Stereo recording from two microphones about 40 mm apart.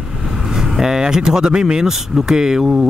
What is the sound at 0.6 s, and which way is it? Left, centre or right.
Speech, centre.